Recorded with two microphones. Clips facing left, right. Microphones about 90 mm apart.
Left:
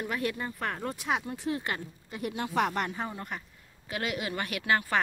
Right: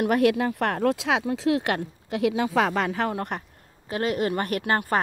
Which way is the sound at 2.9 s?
90° right.